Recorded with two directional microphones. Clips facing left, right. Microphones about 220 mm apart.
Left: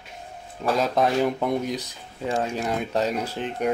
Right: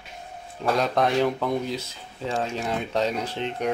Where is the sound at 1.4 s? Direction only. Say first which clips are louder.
Left 1 dB; 15° left (ahead or behind).